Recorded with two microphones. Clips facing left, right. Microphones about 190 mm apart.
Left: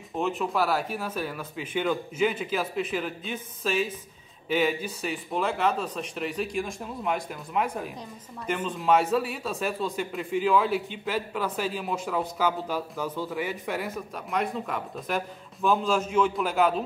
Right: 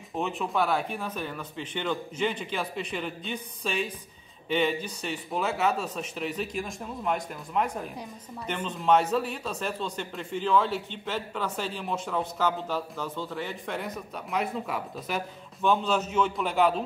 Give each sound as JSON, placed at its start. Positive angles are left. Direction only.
{"t": 0.1, "sound": "speech", "side_deg": 0}